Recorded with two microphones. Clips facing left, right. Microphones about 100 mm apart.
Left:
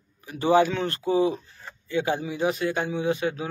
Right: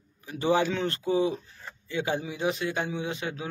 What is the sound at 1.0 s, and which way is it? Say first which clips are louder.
A man's voice: left 4 dB; 30° left (ahead or behind).